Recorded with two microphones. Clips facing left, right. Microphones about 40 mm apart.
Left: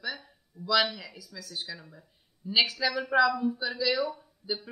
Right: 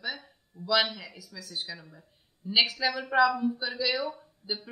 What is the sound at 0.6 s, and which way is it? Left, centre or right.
Speech, right.